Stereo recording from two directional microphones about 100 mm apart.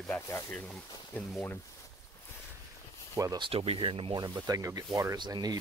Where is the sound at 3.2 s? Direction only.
30° right (ahead or behind).